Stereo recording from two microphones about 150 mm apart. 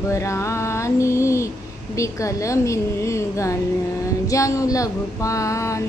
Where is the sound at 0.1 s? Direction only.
20° left (ahead or behind).